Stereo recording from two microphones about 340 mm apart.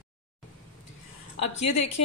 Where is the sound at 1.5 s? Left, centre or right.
Left.